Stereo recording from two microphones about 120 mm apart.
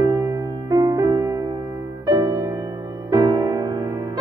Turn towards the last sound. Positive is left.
turn(degrees=-35)  # may be behind; listen again after turning